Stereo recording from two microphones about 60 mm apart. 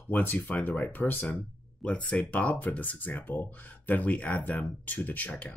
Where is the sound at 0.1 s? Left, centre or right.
Left.